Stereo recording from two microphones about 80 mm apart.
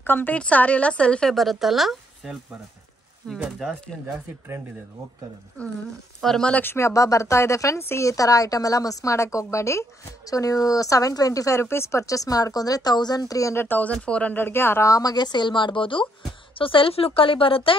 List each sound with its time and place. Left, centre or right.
0.0 s a woman's voice: left; by 2.3 s centre
3.3 s speech: centre
6.2 s speech: centre
6.5 s speech: left
13.7 s a woman's voice: left
14.3 s speech: left
14.9 s speech: left